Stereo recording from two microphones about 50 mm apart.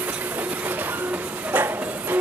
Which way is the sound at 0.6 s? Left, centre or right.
Right.